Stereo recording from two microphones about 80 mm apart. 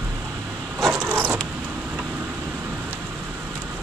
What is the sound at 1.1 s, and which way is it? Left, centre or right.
Vehicle, right.